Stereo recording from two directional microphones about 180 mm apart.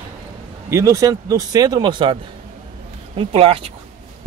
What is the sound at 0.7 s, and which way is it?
Speech, 15° right (ahead or behind).